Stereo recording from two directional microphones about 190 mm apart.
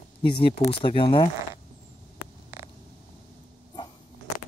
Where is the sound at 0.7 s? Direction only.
30° left (ahead or behind).